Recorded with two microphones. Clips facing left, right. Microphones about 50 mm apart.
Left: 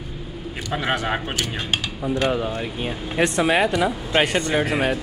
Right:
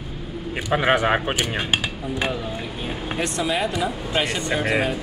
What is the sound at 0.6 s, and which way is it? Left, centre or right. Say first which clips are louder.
Speech: right 5 dB; right.